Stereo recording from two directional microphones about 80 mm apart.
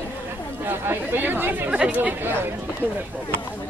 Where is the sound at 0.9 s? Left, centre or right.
Right.